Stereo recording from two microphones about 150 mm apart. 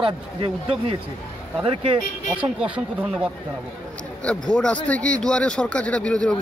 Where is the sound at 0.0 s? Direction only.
40° right (ahead or behind).